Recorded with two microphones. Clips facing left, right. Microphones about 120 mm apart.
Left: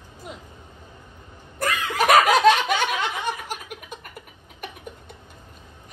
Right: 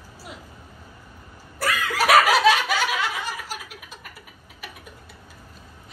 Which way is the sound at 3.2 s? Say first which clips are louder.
Left 4 dB; 55° left (ahead or behind).